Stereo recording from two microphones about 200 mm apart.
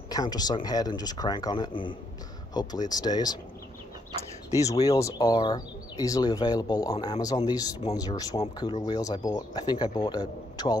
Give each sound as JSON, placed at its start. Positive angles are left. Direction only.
{"t": 0.1, "sound": "speech", "side_deg": 20}
{"t": 4.6, "sound": "speech", "side_deg": 15}